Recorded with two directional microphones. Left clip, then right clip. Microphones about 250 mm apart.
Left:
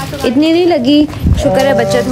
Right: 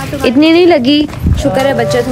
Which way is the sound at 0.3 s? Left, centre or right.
Centre.